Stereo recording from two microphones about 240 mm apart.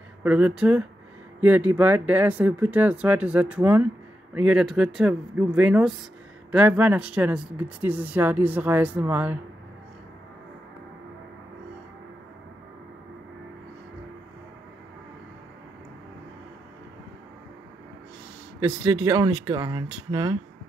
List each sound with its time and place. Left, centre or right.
0.2 s speech: centre
18.6 s speech: centre